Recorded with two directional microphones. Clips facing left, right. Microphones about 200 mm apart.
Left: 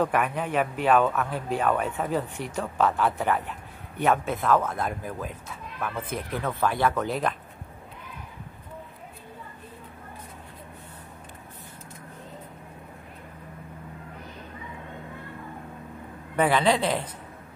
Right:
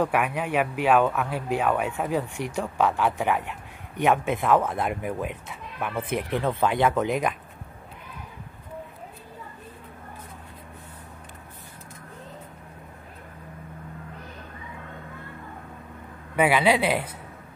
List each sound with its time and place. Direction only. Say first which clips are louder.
0.0 s speech: right 1 dB; 10° right (ahead or behind)
4.6 s speech: right 3 dB; 20° right (ahead or behind)
16.3 s speech: right 1 dB; 10° right (ahead or behind)